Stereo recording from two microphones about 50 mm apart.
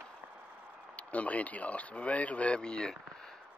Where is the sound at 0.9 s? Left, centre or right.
Left.